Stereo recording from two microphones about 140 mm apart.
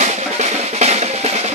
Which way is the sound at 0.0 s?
55° right (ahead or behind).